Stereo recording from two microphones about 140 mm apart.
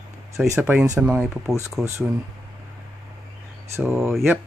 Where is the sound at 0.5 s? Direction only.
15° right (ahead or behind).